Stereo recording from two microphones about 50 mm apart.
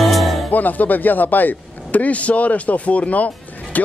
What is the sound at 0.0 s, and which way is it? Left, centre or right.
Music, centre.